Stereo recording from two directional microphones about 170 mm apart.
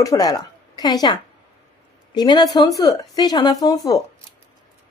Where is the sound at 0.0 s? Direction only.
20° left (ahead or behind).